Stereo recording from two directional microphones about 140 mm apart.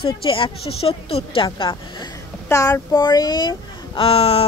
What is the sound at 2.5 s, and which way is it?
Speech, 25° left (ahead or behind).